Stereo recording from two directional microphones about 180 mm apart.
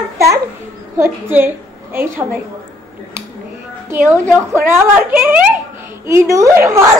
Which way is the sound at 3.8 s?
15° right (ahead or behind).